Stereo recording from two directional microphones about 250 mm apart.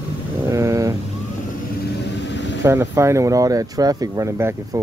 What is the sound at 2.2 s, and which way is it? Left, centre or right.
Vehicle, left.